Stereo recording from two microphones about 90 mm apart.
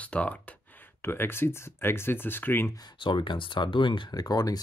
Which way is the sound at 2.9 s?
65° left (ahead or behind).